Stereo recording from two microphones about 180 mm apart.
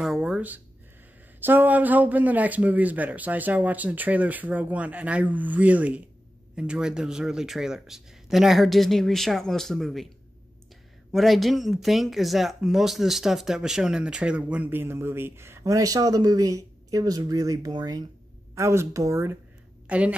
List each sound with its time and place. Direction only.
0.0 s speech: centre (ahead or behind)
11.1 s speech: centre (ahead or behind)